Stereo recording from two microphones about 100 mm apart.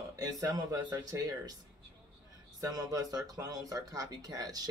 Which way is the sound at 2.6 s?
40° right (ahead or behind).